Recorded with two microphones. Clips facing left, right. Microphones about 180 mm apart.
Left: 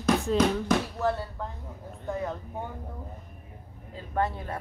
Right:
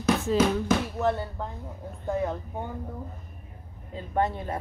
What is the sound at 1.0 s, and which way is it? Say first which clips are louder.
Speech: right 2 dB; 20° right (ahead or behind).